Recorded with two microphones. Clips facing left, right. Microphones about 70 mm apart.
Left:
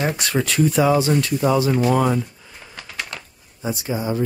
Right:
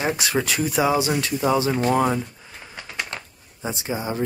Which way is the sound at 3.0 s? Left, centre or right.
Right.